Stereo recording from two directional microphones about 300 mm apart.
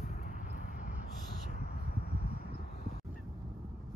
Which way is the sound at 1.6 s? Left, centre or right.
Left.